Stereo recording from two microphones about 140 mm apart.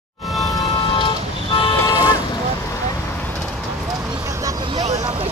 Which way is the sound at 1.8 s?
25° left (ahead or behind).